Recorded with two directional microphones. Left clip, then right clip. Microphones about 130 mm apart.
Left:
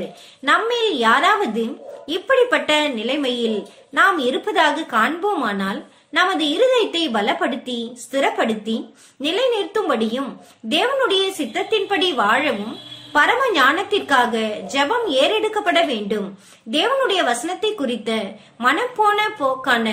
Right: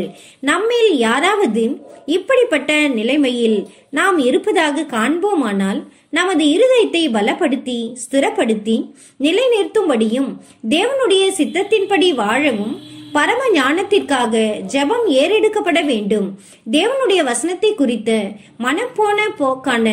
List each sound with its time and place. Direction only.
0.5 s speech: 20° right (ahead or behind)